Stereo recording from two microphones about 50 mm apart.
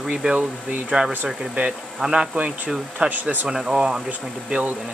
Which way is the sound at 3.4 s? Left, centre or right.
Centre.